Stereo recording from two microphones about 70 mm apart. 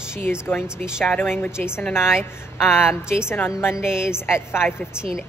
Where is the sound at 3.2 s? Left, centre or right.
Left.